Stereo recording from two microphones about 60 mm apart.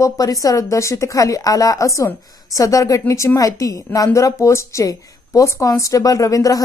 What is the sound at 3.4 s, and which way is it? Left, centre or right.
Speech, left.